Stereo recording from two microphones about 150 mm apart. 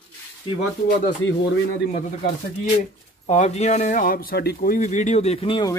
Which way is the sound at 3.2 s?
50° left (ahead or behind).